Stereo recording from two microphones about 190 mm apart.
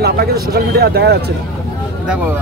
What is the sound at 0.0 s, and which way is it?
Speech, 55° right (ahead or behind).